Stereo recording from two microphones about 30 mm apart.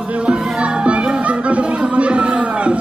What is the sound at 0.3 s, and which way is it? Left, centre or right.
Music, right.